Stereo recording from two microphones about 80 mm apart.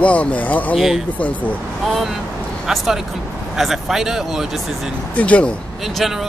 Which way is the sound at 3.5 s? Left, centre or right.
Centre.